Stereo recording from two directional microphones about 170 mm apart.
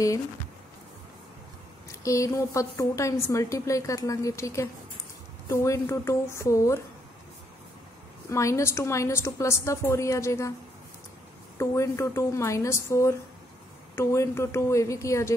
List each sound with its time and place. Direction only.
2.0 s a woman's voice: 20° left (ahead or behind)
8.3 s a woman's voice: 15° left (ahead or behind)
11.5 s a woman's voice: 15° left (ahead or behind)